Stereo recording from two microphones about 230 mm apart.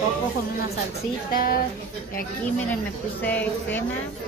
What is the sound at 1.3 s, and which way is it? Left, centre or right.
Speech, left.